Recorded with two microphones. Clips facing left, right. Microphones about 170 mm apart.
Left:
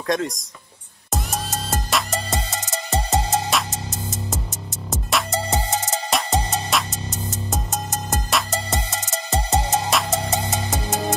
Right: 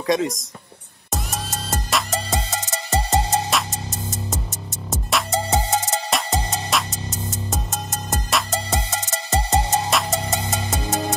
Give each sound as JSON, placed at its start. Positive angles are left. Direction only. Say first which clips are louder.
{"t": 0.0, "sound": "speech", "louder": "right 2 dB", "side_deg": 0}
{"t": 1.1, "sound": "music", "louder": "left 2 dB", "side_deg": 0}
{"t": 5.1, "sound": "music", "louder": "right 2 dB", "side_deg": 0}
{"t": 8.1, "sound": "music", "louder": "right 1 dB", "side_deg": 0}